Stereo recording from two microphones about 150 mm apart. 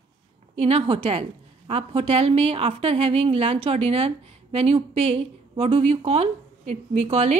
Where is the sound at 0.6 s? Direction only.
40° right (ahead or behind).